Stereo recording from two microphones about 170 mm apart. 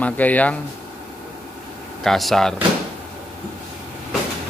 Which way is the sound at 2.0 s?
Centre (ahead or behind).